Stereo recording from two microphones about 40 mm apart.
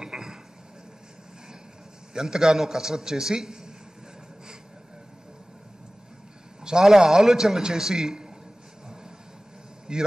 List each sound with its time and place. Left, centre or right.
0.0 s a sound: centre
2.1 s a man's voice: centre
6.6 s a man's voice: centre
9.9 s a man's voice: centre